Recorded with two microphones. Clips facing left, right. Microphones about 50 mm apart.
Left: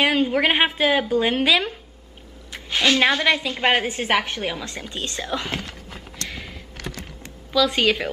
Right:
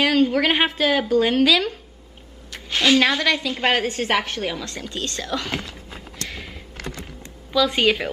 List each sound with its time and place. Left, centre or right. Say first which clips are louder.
0.0 s a woman's voice: right 1 dB; centre
2.7 s a woman's voice: right 2 dB; centre
3.0 s a woman's voice: left 1 dB; centre
6.2 s a sound: even; centre
7.5 s speech: right 1 dB; centre